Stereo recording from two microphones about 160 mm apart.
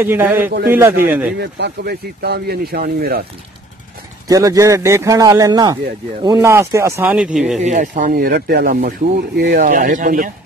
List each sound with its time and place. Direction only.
0.0 s speech: 15° right (ahead or behind)
1.4 s speech: 85° right
4.3 s a man's voice: 20° right (ahead or behind)
7.1 s speech: 5° right (ahead or behind)
7.6 s speech: 50° right (ahead or behind)